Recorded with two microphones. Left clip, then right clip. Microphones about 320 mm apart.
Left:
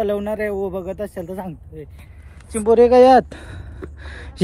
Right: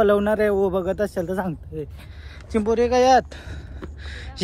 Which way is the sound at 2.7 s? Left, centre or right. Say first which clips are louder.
Left 6 dB; centre.